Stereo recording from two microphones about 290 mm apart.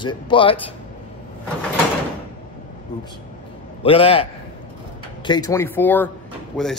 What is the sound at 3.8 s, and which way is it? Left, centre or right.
Speech, centre.